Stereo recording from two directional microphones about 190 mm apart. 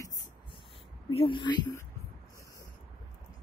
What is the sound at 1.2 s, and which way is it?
Speech, 25° left (ahead or behind).